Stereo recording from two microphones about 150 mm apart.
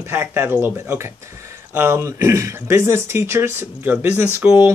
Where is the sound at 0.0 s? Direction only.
15° right (ahead or behind).